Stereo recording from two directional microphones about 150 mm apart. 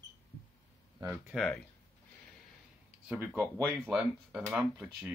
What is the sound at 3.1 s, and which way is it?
Speech, 10° right (ahead or behind).